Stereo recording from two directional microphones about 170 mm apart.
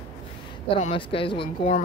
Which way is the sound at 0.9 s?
30° left (ahead or behind).